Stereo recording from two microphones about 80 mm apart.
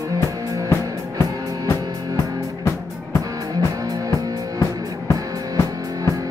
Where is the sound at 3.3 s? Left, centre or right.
Right.